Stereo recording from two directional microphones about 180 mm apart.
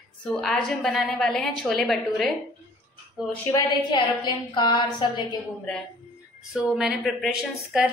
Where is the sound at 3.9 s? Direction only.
25° left (ahead or behind).